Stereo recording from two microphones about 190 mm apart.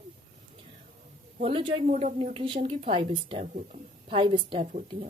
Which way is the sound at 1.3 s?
30° right (ahead or behind).